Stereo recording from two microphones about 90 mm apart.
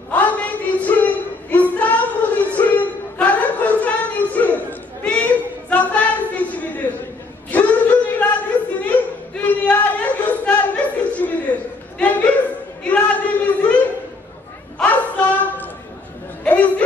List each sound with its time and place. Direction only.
0.1 s a sound: 15° left (ahead or behind)
14.8 s child singing: 15° left (ahead or behind)
16.4 s chatter: 15° left (ahead or behind)